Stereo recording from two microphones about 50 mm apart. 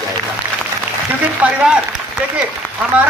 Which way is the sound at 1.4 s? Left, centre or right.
Right.